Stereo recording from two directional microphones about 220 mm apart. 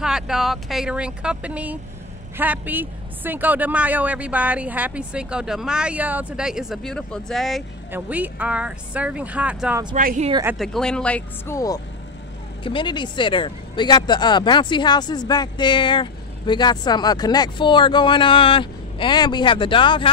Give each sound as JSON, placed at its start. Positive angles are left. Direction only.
{"t": 0.0, "sound": "speech", "side_deg": 0}
{"t": 9.9, "sound": "speech", "side_deg": -35}
{"t": 10.6, "sound": "speech", "side_deg": 0}